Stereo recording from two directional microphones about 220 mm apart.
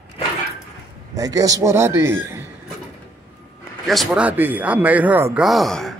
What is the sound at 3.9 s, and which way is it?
Speech, centre (ahead or behind).